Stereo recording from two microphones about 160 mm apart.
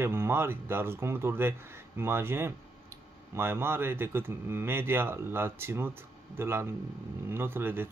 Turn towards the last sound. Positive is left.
turn(degrees=-15)  # may be behind; listen again after turning